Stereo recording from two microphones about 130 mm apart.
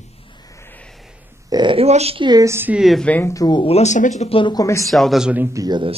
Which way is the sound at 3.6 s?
60° left (ahead or behind).